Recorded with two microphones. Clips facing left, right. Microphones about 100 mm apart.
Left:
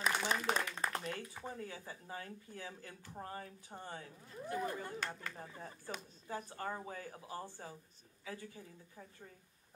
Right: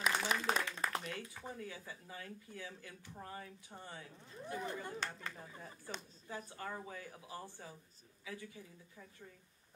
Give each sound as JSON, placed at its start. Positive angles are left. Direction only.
{"t": 0.0, "sound": "a sound", "side_deg": 35}
{"t": 1.3, "sound": "speech", "side_deg": 30}
{"t": 4.8, "sound": "speech", "side_deg": -30}
{"t": 5.3, "sound": "speech", "side_deg": 35}